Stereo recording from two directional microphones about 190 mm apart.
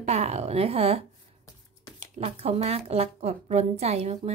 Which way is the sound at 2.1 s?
35° right (ahead or behind).